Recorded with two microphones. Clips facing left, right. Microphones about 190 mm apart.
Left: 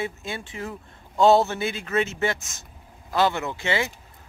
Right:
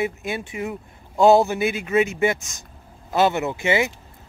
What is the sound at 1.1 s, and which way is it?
Speech, centre (ahead or behind).